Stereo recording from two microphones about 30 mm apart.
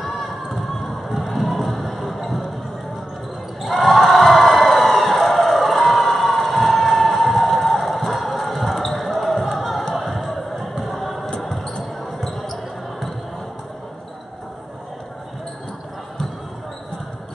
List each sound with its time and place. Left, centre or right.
0.0 s music: centre
3.6 s crowd: centre
7.5 s basketball bounce: centre
10.8 s a sound: centre
11.5 s basketball bounce: centre
11.8 s basketball bounce: centre